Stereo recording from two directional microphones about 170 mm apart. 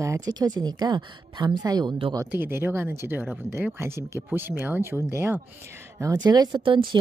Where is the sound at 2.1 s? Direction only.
15° right (ahead or behind).